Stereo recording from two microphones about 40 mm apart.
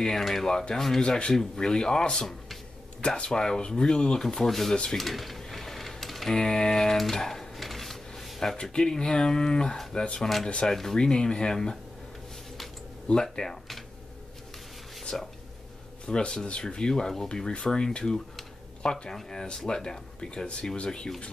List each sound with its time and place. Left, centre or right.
0.0 s speech: centre
1.0 s speech: left
3.3 s speech: centre
4.9 s typewriter: centre
6.3 s speech: centre
7.0 s a sound: centre
8.7 s speech: centre
10.2 s speech: centre
11.0 s speech: left
13.1 s speech: centre
15.1 s speech: centre